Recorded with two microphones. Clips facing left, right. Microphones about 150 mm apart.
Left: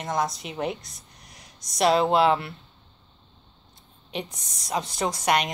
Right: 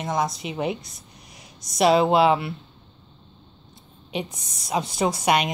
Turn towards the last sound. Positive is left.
turn(degrees=-5)  # may be behind; listen again after turning